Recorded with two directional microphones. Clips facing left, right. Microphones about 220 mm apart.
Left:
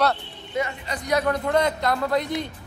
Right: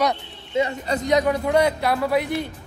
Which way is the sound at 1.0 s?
15° right (ahead or behind).